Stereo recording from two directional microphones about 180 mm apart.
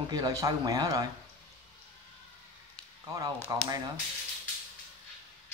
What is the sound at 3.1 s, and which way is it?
Speech, 20° right (ahead or behind).